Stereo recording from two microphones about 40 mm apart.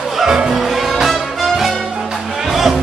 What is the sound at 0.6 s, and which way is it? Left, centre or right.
Music, centre.